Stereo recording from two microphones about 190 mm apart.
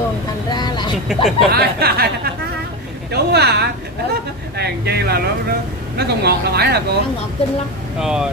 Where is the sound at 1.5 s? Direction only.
55° right (ahead or behind).